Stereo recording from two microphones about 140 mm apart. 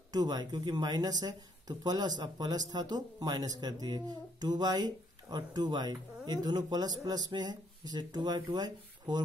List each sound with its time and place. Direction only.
0.1 s speech: 30° right (ahead or behind)